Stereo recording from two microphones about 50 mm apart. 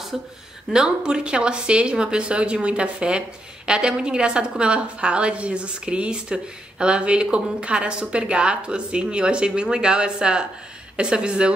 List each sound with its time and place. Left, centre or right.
0.7 s speech: centre